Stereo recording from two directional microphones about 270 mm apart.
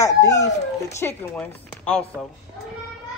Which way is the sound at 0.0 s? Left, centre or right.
Centre.